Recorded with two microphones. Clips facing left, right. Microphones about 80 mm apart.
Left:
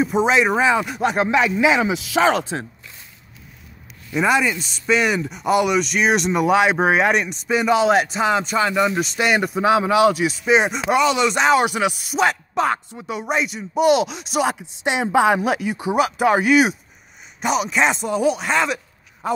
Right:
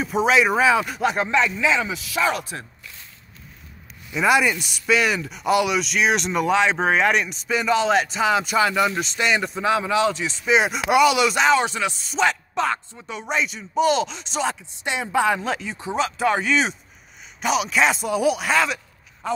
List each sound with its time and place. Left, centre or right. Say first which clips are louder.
0.0 s speech: left 2 dB; centre; by 3.0 s left
4.3 s speech: right 2 dB; centre
8.6 s speech: left 2 dB; centre
9.4 s speech: left 5 dB; centre
10.2 s speech: left 3 dB; centre
11.6 s speech: left 5 dB; centre
17.4 s speech: left 1 dB; centre